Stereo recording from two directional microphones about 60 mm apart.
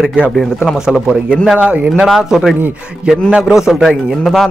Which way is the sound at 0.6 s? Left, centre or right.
Centre.